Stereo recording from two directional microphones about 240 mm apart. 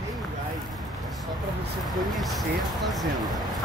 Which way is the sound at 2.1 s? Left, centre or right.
Centre.